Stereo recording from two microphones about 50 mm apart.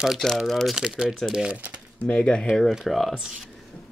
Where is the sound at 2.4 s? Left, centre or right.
Centre.